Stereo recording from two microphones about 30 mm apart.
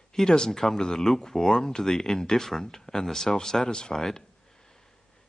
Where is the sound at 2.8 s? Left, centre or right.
Centre.